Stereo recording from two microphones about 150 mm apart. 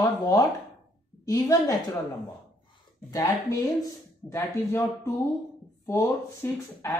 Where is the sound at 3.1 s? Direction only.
25° left (ahead or behind).